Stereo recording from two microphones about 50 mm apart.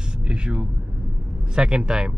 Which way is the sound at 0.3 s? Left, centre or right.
Centre.